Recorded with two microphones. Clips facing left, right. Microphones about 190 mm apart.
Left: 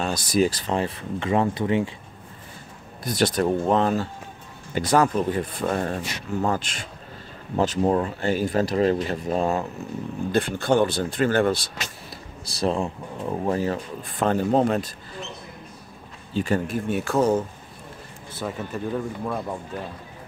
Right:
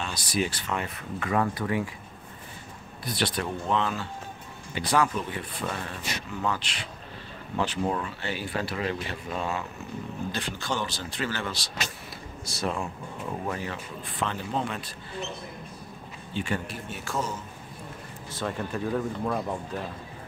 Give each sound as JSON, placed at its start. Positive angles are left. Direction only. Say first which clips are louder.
{"t": 0.0, "sound": "speech", "louder": "left 8 dB", "side_deg": 45}
{"t": 3.0, "sound": "speech", "louder": "left 8 dB", "side_deg": 45}
{"t": 10.3, "sound": "speech", "louder": "left 14 dB", "side_deg": 55}
{"t": 12.4, "sound": "speech", "louder": "left 7 dB", "side_deg": 35}
{"t": 16.3, "sound": "speech", "louder": "left 7 dB", "side_deg": 40}
{"t": 16.9, "sound": "speech", "louder": "left 12 dB", "side_deg": 60}
{"t": 18.4, "sound": "speech", "louder": "left 1 dB", "side_deg": 5}